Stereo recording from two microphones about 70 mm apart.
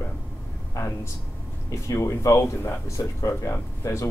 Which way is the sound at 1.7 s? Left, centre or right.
Left.